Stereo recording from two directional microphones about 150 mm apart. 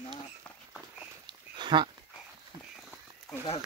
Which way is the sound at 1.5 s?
30° right (ahead or behind).